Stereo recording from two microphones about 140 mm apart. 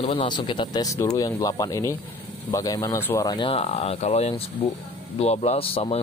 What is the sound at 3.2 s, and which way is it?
Speech, 35° left (ahead or behind).